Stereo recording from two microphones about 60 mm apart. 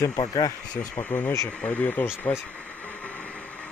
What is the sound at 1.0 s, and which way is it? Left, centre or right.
Speech, left.